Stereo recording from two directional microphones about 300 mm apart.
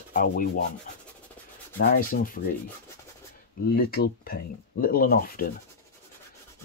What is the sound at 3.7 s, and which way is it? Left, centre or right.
Speech, left.